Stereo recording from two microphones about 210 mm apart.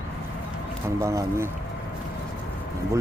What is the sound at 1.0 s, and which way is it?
Speech, 15° right (ahead or behind).